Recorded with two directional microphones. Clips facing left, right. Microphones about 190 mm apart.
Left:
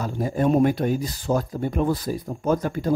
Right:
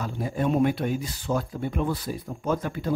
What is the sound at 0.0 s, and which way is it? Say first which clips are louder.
Speech: left 4 dB; 40° left (ahead or behind).